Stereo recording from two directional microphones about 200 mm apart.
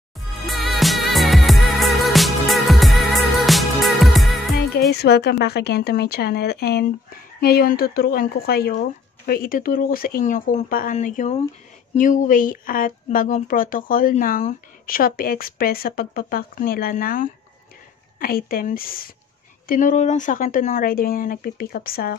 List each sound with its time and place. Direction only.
0.5 s music: centre (ahead or behind)
5.0 s speech: 55° left (ahead or behind)